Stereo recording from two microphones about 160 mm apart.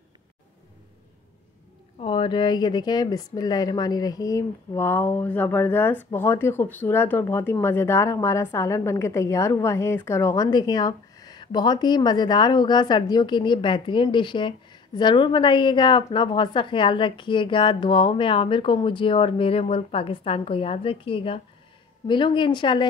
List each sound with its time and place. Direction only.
2.0 s speech: 30° left (ahead or behind)